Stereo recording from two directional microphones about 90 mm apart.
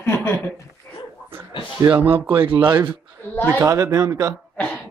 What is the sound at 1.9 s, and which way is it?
Speech, 20° right (ahead or behind).